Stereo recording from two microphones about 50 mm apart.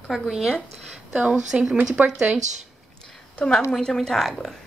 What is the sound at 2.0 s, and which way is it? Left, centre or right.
Speech, right.